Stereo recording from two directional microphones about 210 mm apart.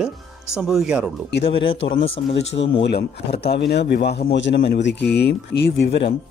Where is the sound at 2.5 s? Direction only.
60° left (ahead or behind).